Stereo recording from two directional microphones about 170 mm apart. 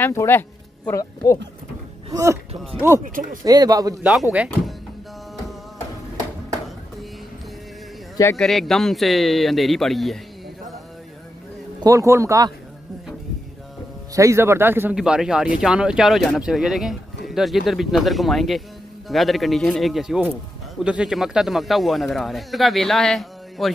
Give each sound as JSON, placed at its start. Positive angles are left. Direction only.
{"t": 0.0, "sound": "speech", "side_deg": 15}
{"t": 3.4, "sound": "a man's voice", "side_deg": -20}
{"t": 4.0, "sound": "speech", "side_deg": -5}
{"t": 8.4, "sound": "speech", "side_deg": 0}
{"t": 11.8, "sound": "a man's voice", "side_deg": -20}
{"t": 14.1, "sound": "speech", "side_deg": -15}